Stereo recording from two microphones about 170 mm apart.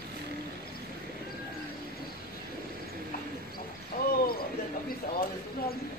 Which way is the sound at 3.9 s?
55° left (ahead or behind).